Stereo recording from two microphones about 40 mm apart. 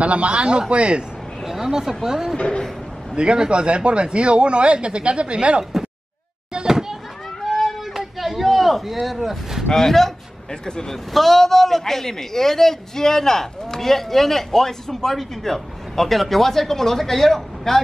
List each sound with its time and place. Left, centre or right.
0.0 s speech: right
1.4 s speech: centre
2.3 s speech: left
3.2 s speech: right
6.7 s children playing: centre
7.4 s a sound: centre
9.0 s speech: centre
9.7 s a man's voice: centre
10.6 s a man's voice: centre
11.1 s a man's voice: centre